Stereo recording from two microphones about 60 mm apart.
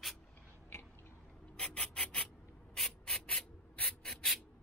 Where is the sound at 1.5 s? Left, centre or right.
Left.